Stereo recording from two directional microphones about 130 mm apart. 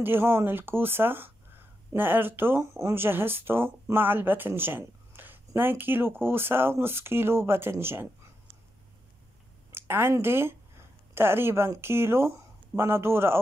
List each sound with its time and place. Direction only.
0.0 s speech: 15° right (ahead or behind)
9.7 s a woman's voice: 20° right (ahead or behind)